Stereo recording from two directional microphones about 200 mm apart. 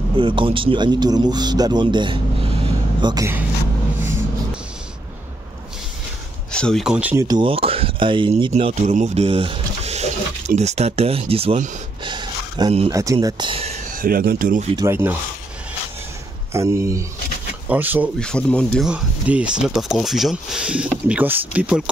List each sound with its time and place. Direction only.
0.2 s speech: 25° right (ahead or behind)
6.5 s speech: 5° left (ahead or behind)
7.2 s speech: 25° right (ahead or behind)
12.0 s a sound: 20° right (ahead or behind)
12.9 s speech: 15° right (ahead or behind)
13.9 s speech: 45° right (ahead or behind)
14.8 s speech: 10° right (ahead or behind)
16.5 s speech: 15° right (ahead or behind)
18.2 s speech: 5° left (ahead or behind)